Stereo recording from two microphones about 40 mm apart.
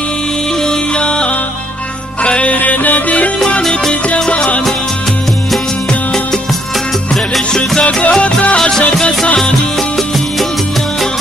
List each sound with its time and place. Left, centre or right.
0.9 s music: left
7.8 s music: left
8.5 s music: centre